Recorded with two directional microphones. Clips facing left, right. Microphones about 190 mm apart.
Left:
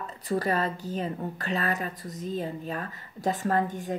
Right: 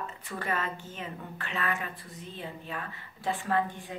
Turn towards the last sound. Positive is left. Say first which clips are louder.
# left 3 dB
turn(degrees=45)  # may be behind; listen again after turning